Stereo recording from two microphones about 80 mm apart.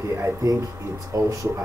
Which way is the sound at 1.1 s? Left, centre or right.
Right.